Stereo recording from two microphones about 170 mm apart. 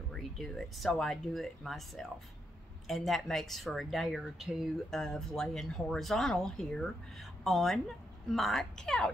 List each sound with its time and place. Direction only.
0.1 s speech: 5° left (ahead or behind)